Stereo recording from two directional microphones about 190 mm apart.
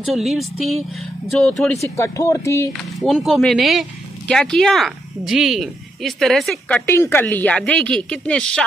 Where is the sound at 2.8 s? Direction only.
Centre (ahead or behind).